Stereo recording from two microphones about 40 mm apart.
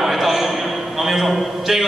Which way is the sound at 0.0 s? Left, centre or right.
Centre.